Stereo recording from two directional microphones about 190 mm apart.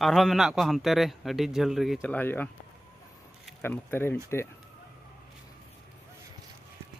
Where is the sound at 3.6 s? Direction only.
10° left (ahead or behind).